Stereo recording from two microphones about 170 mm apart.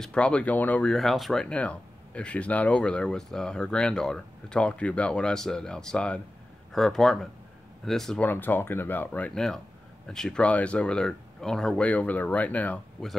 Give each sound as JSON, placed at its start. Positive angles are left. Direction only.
{"t": 0.0, "sound": "speech", "side_deg": 5}